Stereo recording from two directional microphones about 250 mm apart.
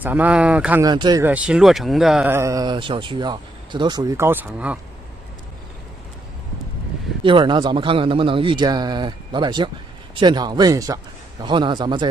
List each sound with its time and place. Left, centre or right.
0.0 s speech: centre
7.2 s a man's voice: centre